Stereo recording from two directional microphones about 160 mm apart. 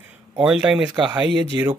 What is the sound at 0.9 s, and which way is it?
Speech, 30° right (ahead or behind).